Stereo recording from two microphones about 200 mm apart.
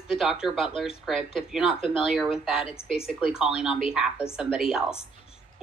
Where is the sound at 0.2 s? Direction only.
Centre (ahead or behind).